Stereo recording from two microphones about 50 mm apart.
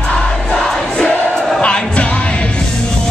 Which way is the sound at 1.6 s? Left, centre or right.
Left.